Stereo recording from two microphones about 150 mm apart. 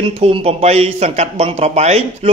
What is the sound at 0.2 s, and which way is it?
Speech, 40° right (ahead or behind).